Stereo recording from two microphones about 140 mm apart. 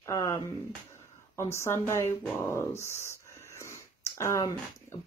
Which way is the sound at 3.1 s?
20° left (ahead or behind).